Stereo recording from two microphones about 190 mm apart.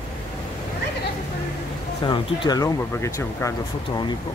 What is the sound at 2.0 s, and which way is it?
Speech, 25° left (ahead or behind).